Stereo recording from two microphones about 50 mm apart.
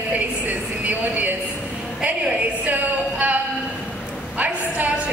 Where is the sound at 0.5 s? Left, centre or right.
Right.